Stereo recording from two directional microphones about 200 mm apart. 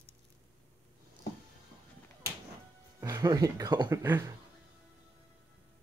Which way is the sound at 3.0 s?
15° right (ahead or behind).